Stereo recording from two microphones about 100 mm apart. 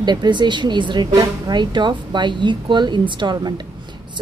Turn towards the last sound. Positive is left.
turn(degrees=-45)  # may be behind; listen again after turning